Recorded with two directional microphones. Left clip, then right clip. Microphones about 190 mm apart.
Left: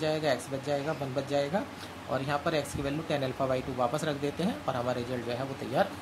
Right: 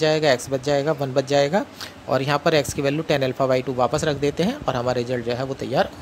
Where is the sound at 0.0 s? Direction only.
45° right (ahead or behind).